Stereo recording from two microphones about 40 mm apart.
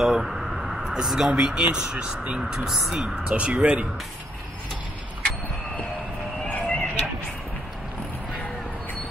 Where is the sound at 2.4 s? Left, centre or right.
Centre.